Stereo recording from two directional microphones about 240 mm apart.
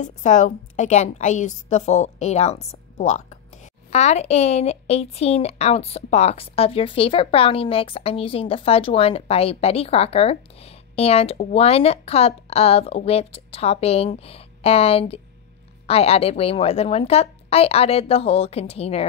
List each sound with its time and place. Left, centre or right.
0.0 s speech: left